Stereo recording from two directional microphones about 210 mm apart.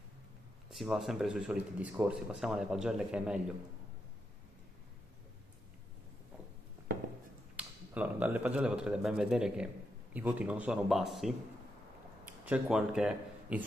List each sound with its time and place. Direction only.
0.7 s speech: centre (ahead or behind)
7.5 s speech: 5° right (ahead or behind)